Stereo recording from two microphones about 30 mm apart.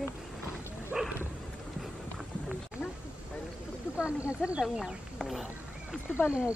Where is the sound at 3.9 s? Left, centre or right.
Right.